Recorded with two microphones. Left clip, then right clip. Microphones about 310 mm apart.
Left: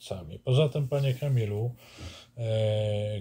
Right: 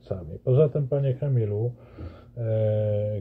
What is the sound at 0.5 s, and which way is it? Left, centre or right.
Speech, centre.